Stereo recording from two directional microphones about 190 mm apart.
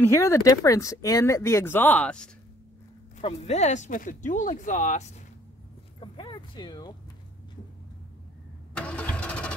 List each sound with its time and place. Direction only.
0.0 s speech: 15° left (ahead or behind)
3.2 s speech: 35° left (ahead or behind)
5.9 s a sound: 25° left (ahead or behind)
8.7 s vehicle: 5° left (ahead or behind)